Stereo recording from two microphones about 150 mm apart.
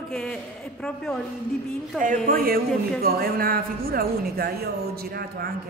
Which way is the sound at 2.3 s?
75° right (ahead or behind).